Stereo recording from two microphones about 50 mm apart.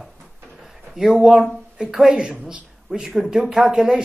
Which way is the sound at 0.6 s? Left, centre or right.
Centre.